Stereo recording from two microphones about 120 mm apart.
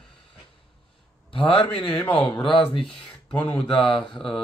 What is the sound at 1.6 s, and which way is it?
Speech, 10° left (ahead or behind).